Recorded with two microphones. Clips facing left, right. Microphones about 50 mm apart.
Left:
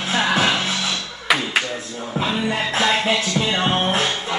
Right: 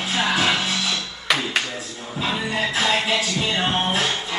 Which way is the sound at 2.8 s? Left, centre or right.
Centre.